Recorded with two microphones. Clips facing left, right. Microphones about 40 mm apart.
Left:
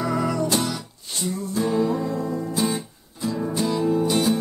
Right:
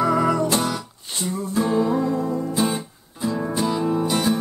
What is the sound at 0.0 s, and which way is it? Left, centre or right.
Music, right.